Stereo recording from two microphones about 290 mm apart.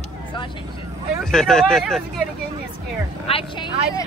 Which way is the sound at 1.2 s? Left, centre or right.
Centre.